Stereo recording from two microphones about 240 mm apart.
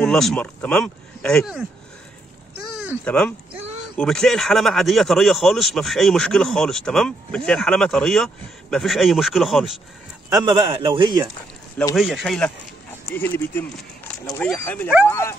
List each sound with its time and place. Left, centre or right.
0.0 s speech: centre
2.7 s a sound: centre
3.1 s speech: centre
10.3 s a man's voice: centre
11.9 s speech: centre